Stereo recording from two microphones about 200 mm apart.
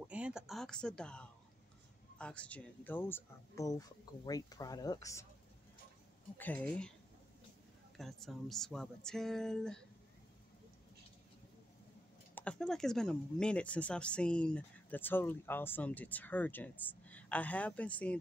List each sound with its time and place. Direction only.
0.1 s speech: 5° right (ahead or behind); by 5.2 s 15° left (ahead or behind)
6.3 s speech: 10° left (ahead or behind)
8.0 s speech: centre (ahead or behind)
12.4 s speech: 5° left (ahead or behind)